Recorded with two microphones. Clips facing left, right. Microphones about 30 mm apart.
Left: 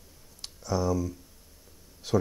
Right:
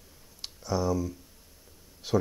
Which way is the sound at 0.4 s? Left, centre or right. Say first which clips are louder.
Even; centre.